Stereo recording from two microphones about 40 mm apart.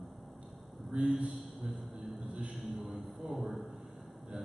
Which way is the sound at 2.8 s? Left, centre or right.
Centre.